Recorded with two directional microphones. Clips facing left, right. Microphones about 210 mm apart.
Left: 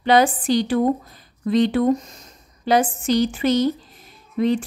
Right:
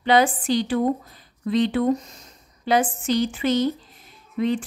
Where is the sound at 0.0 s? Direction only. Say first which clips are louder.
Left 2 dB; 40° left (ahead or behind).